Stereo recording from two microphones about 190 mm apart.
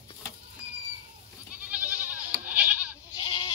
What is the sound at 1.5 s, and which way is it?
Goat, 10° right (ahead or behind).